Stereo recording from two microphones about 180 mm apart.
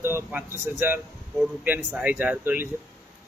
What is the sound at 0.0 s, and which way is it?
A man's voice, 10° right (ahead or behind).